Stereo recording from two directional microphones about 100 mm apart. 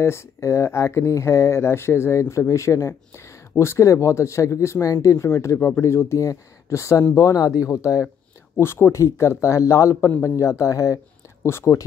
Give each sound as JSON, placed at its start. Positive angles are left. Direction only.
{"t": 0.0, "sound": "speech", "side_deg": 25}
{"t": 9.9, "sound": "speech", "side_deg": 20}
{"t": 10.4, "sound": "speech", "side_deg": 30}